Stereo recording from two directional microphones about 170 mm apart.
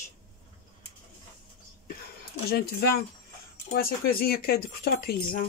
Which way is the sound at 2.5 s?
65° left (ahead or behind).